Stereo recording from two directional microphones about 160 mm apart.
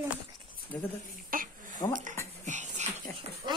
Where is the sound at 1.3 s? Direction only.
60° right (ahead or behind).